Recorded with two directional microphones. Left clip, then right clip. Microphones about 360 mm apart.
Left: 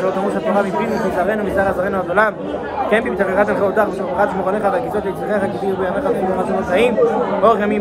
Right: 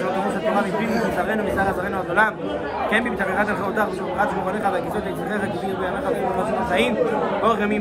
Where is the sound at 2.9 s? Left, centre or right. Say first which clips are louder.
Left 6 dB; centre.